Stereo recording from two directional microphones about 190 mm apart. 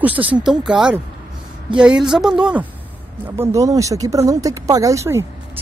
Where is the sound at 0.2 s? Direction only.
5° right (ahead or behind).